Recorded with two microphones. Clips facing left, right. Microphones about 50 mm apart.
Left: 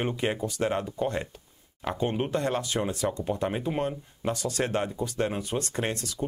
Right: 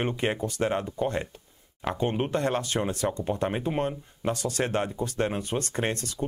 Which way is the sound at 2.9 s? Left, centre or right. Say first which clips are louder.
Right 1 dB; right.